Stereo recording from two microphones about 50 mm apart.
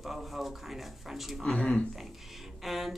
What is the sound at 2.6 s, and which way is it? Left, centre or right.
Speech, centre.